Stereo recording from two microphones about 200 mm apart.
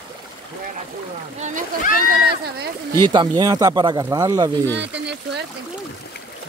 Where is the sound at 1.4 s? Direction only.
40° right (ahead or behind).